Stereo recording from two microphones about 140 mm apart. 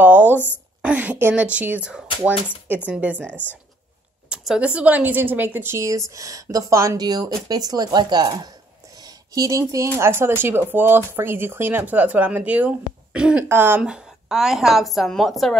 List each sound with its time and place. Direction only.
0.0 s a sound: 15° right (ahead or behind)
0.8 s speech: 10° right (ahead or behind)
4.3 s a woman's voice: 5° right (ahead or behind)